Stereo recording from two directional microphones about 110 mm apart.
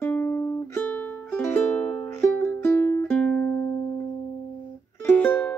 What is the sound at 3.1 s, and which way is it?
Music, 10° left (ahead or behind).